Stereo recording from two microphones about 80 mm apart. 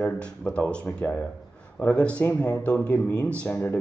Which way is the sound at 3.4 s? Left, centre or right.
Left.